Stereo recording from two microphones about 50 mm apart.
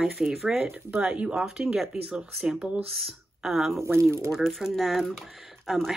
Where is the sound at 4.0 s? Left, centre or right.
Right.